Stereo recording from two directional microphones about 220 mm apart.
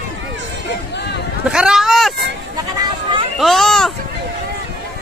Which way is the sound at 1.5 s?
5° right (ahead or behind).